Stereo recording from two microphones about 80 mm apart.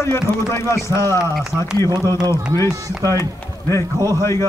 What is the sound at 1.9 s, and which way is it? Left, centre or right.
Speech, right.